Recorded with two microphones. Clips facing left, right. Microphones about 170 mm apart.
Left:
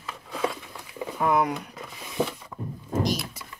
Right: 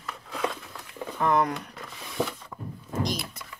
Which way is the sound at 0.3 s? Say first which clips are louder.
Left 2 dB; 5° left (ahead or behind).